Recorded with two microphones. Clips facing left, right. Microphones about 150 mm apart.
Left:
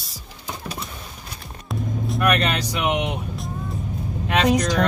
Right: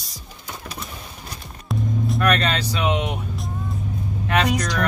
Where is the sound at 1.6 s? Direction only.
Centre (ahead or behind).